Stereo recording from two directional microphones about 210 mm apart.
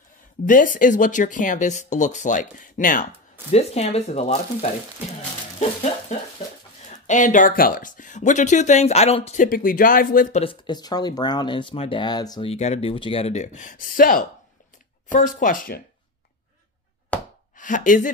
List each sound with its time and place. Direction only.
0.5 s speech: 40° left (ahead or behind)
3.5 s speech: 30° left (ahead or behind)
6.1 s speech: 35° left (ahead or behind)
10.4 s speech: 20° left (ahead or behind); by 15.8 s 40° left (ahead or behind)
17.1 s a sound: 5° left (ahead or behind)
17.6 s speech: 40° left (ahead or behind)